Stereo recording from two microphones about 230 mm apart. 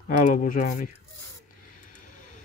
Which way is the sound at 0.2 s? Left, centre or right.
Left.